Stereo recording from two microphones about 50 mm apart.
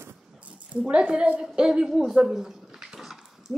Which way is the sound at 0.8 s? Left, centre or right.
Right.